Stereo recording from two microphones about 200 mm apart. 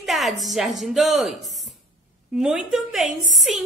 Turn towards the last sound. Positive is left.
turn(degrees=0)  # may be behind; listen again after turning